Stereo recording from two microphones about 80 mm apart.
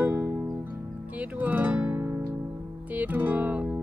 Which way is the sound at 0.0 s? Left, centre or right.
Right.